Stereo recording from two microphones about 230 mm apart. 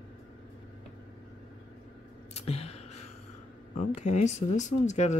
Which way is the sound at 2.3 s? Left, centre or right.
Left.